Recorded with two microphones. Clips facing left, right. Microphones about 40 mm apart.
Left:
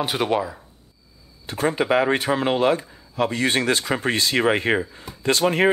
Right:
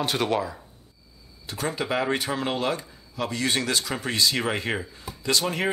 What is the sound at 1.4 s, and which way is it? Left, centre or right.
Speech, left.